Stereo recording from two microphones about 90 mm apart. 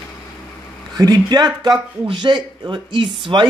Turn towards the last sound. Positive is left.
turn(degrees=-65)  # may be behind; listen again after turning